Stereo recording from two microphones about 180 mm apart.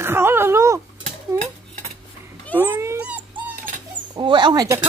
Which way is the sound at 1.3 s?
20° right (ahead or behind).